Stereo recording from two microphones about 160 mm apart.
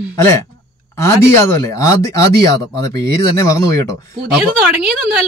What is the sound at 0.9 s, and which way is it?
Speech, 15° left (ahead or behind).